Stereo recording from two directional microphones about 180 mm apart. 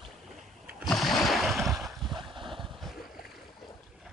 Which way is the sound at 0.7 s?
5° right (ahead or behind).